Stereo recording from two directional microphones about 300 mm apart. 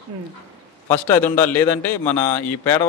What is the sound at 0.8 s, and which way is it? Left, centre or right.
A man's voice, centre.